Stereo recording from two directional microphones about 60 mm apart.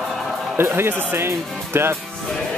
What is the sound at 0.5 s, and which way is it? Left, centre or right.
Speech, right.